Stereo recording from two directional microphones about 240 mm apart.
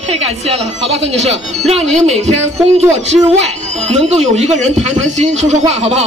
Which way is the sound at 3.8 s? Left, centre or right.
Right.